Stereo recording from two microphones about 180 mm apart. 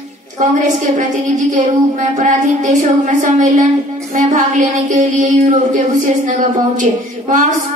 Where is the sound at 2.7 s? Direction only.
45° right (ahead or behind).